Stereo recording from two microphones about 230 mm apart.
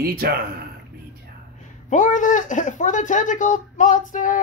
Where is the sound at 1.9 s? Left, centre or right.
Left.